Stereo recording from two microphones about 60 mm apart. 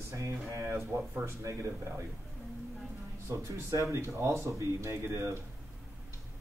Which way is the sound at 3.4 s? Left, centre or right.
Right.